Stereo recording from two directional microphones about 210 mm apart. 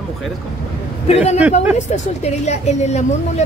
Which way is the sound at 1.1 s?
30° left (ahead or behind).